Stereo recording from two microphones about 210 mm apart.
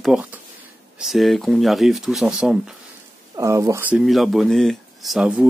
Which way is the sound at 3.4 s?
15° right (ahead or behind).